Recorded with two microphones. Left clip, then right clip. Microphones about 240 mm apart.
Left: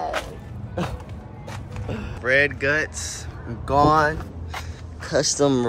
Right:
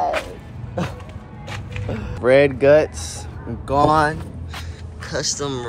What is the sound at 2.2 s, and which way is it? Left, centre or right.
Speech, centre.